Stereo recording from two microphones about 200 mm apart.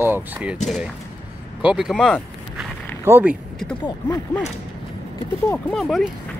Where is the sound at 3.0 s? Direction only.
10° right (ahead or behind).